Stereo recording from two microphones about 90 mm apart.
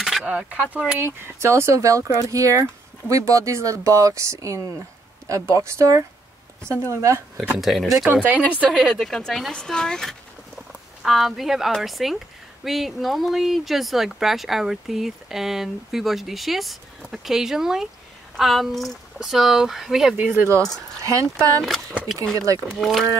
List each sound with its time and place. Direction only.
0.0 s speech: 5° right (ahead or behind)
0.9 s speech: 25° right (ahead or behind)
7.5 s speech: centre (ahead or behind)
8.1 s speech: 20° right (ahead or behind)
8.6 s speech: centre (ahead or behind)
10.7 s speech: 5° right (ahead or behind)
20.3 s speech: 30° right (ahead or behind)
22.8 s speech: centre (ahead or behind)